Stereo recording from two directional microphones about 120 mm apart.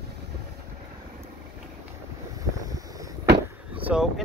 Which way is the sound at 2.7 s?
30° right (ahead or behind).